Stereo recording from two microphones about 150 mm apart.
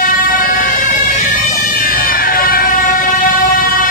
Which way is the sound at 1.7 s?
70° left (ahead or behind).